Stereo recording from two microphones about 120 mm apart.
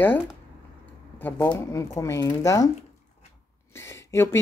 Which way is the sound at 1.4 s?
30° left (ahead or behind).